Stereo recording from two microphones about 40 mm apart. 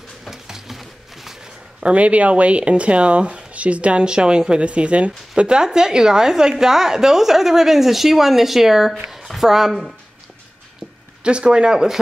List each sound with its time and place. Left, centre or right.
0.2 s a sound: centre
2.0 s speech: right
4.0 s a woman's voice: right
11.2 s speech: right